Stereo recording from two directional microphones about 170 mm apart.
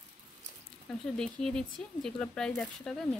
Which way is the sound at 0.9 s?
5° left (ahead or behind).